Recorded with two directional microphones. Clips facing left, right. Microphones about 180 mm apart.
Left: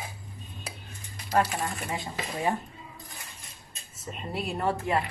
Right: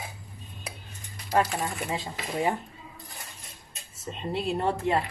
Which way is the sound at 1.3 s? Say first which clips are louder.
Right 1 dB; 20° right (ahead or behind).